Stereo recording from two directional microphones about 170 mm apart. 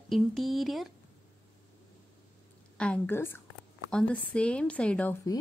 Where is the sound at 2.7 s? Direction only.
5° left (ahead or behind).